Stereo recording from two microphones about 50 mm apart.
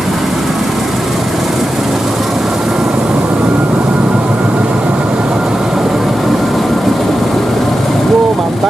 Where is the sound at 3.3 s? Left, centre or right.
Right.